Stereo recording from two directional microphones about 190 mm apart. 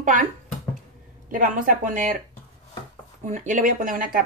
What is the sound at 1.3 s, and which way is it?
Speech, 45° right (ahead or behind).